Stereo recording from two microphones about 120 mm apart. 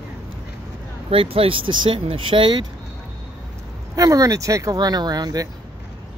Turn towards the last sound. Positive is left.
turn(degrees=-30)  # may be behind; listen again after turning